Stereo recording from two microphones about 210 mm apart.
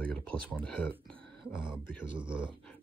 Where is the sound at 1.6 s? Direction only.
25° right (ahead or behind).